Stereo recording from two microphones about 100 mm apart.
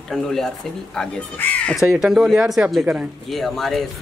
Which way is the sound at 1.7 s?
5° right (ahead or behind).